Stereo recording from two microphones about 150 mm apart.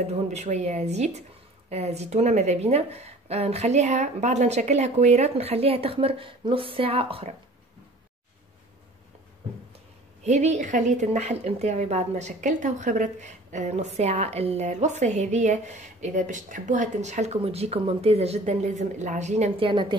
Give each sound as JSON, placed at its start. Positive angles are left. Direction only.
{"t": 0.1, "sound": "a woman's voice", "side_deg": -45}
{"t": 10.2, "sound": "a woman's voice", "side_deg": -50}